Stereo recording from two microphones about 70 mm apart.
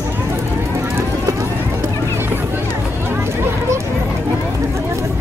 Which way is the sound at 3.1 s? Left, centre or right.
Right.